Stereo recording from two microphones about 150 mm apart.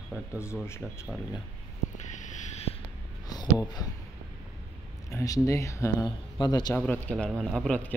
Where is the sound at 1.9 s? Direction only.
55° left (ahead or behind).